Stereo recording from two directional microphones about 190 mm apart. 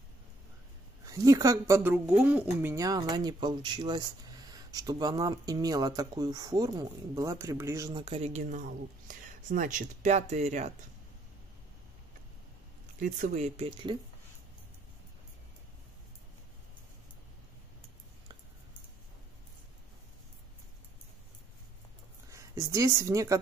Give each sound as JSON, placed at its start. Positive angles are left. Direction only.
{"t": 1.0, "sound": "a woman's voice", "side_deg": -20}
{"t": 13.0, "sound": "speech", "side_deg": -40}
{"t": 22.3, "sound": "a woman's voice", "side_deg": -15}